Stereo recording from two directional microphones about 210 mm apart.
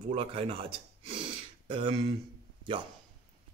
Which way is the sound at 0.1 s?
25° right (ahead or behind).